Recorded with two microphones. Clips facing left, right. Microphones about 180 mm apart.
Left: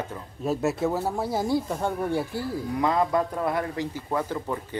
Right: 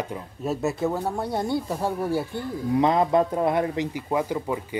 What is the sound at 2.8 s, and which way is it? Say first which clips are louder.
Speech: right 3 dB; 20° right (ahead or behind).